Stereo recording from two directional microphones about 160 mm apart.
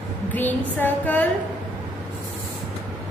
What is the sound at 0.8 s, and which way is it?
Speech, 10° left (ahead or behind).